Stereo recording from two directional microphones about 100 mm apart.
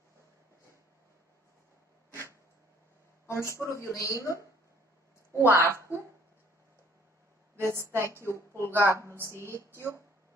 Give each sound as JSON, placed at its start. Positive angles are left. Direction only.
{"t": 3.3, "sound": "a woman's voice", "side_deg": 30}
{"t": 5.4, "sound": "a woman's voice", "side_deg": -25}
{"t": 7.5, "sound": "a woman's voice", "side_deg": -25}